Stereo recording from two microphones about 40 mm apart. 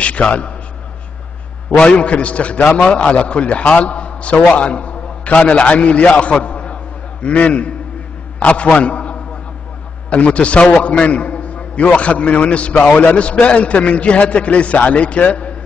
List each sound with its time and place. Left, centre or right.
0.0 s a man's voice: left
1.8 s a man's voice: left